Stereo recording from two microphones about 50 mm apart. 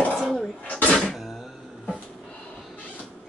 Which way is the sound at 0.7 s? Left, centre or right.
Left.